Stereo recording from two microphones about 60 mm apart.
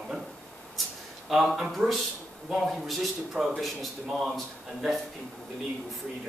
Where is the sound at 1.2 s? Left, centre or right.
Centre.